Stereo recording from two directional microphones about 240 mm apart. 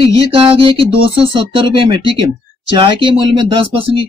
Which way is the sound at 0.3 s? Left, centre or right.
Right.